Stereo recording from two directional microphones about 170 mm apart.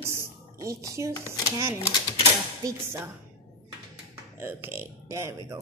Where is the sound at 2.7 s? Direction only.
15° right (ahead or behind).